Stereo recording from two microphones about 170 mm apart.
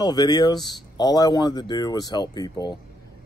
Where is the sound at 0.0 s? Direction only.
25° left (ahead or behind).